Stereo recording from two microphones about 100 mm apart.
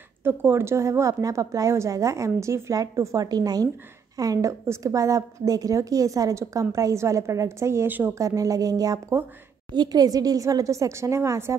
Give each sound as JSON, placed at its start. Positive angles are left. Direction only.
{"t": 0.2, "sound": "a woman's voice", "side_deg": -25}
{"t": 8.2, "sound": "a woman's voice", "side_deg": -35}